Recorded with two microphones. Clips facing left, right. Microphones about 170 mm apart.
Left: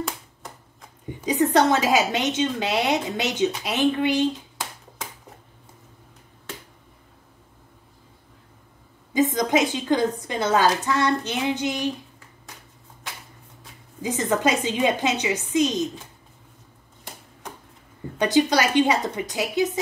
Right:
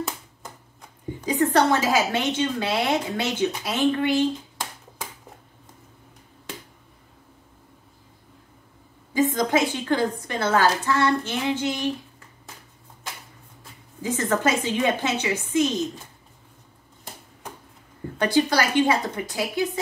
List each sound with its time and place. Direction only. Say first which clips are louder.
1.2 s a woman's voice: left 1 dB; 20° left (ahead or behind)
9.1 s a woman's voice: left 1 dB; 20° left (ahead or behind)
14.0 s a woman's voice: left 1 dB; 15° left (ahead or behind)
18.2 s a woman's voice: left 1 dB; 20° left (ahead or behind)